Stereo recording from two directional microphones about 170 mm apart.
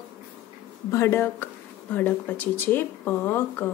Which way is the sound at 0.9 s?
15° left (ahead or behind).